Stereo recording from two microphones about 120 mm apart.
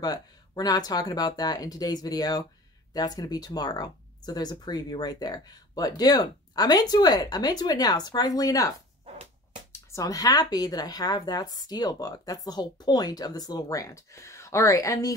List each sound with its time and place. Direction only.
0.0 s speech: 30° left (ahead or behind)